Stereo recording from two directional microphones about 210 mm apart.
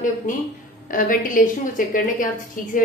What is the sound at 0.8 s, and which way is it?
Speech, 40° left (ahead or behind).